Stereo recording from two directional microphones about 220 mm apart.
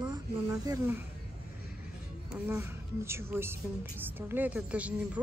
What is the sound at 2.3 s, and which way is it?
A woman's voice, 10° right (ahead or behind).